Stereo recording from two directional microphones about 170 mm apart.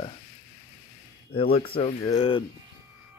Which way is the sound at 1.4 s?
35° left (ahead or behind).